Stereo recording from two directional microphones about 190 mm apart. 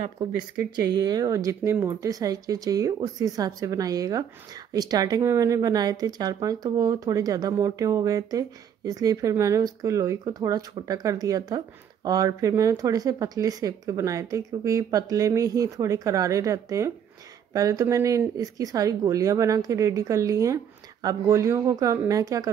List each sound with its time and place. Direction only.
0.7 s speech: 20° right (ahead or behind)